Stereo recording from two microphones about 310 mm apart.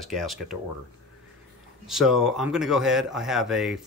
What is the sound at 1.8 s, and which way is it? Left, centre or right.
Speech, centre.